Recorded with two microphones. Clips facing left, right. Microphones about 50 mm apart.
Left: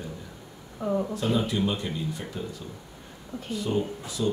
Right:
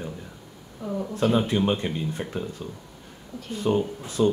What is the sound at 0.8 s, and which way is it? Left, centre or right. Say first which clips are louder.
Speech: left 3 dB; left.